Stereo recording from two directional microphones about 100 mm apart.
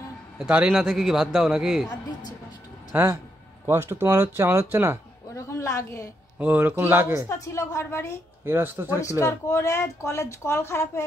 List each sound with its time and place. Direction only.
0.4 s a man's voice: 10° right (ahead or behind)
2.9 s speech: 20° right (ahead or behind)
5.3 s a sound: 30° left (ahead or behind)
6.3 s speech: 15° right (ahead or behind)
7.2 s speech: 30° left (ahead or behind)
8.5 s speech: 25° right (ahead or behind)
9.2 s speech: 30° left (ahead or behind)